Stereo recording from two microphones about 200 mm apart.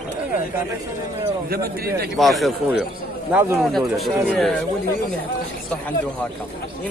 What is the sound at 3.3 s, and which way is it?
Speech, 10° right (ahead or behind).